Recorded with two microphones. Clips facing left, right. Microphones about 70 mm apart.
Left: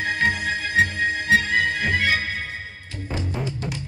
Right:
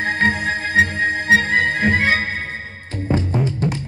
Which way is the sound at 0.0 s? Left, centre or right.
Right.